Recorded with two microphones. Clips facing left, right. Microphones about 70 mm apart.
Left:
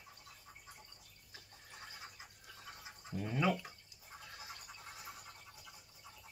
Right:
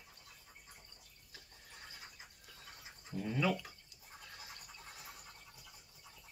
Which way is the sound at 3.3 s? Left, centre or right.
Left.